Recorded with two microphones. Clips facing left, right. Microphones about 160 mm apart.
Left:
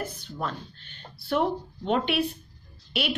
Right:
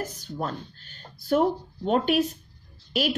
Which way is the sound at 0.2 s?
40° right (ahead or behind).